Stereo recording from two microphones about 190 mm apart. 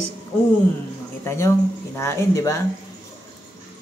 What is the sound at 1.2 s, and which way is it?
Speech, 15° left (ahead or behind).